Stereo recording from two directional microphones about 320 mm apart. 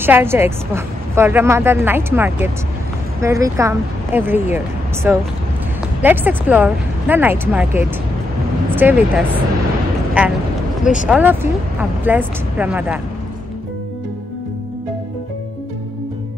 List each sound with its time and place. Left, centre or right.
0.0 s speech: centre
10.8 s speech: left
11.1 s speech: centre